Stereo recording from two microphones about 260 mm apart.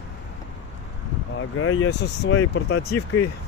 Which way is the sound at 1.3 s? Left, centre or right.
Left.